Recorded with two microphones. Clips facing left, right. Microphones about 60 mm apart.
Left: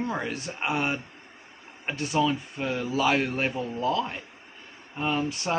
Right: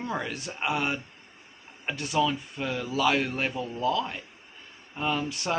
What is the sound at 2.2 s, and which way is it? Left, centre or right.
Speech, centre.